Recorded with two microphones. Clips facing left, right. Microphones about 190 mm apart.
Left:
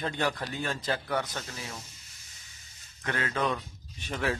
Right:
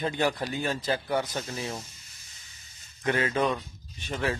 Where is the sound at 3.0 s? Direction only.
15° right (ahead or behind).